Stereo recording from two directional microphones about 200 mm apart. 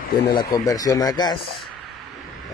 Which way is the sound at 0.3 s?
20° left (ahead or behind).